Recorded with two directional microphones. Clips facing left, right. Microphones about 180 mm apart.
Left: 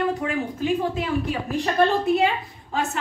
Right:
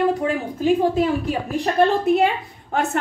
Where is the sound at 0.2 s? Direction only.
35° right (ahead or behind).